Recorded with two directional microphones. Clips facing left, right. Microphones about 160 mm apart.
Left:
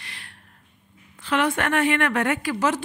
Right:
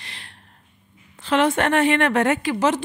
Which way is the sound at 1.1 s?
30° right (ahead or behind).